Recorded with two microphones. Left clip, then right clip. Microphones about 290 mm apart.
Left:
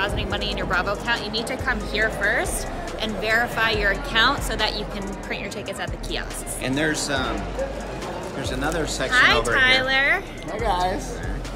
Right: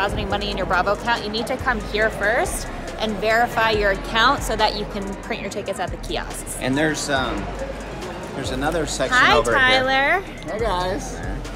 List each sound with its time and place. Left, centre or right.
0.0 s a woman's voice: centre
6.6 s a woman's voice: right
8.4 s a woman's voice: centre
9.1 s a woman's voice: centre
10.6 s speech: centre